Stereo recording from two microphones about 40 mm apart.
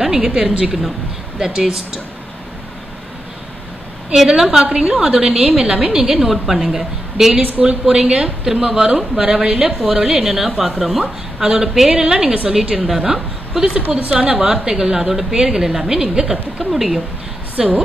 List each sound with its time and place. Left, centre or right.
0.0 s a woman's voice: centre
4.1 s a woman's voice: centre
5.9 s a woman's voice: centre
13.8 s a woman's voice: right
14.1 s a woman's voice: centre